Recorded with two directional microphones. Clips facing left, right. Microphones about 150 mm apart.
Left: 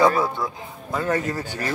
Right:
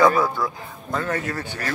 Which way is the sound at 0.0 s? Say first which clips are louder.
Right 1 dB; 30° left (ahead or behind).